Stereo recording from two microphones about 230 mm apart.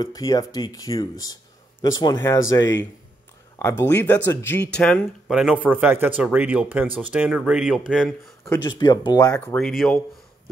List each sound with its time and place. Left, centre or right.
0.0 s speech: centre
3.5 s speech: centre
8.6 s speech: centre
9.6 s speech: centre